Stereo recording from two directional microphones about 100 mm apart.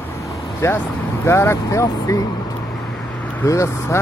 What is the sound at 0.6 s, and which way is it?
Speech, 30° left (ahead or behind).